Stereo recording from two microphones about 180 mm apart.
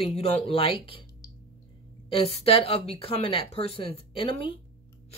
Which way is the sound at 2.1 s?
35° left (ahead or behind).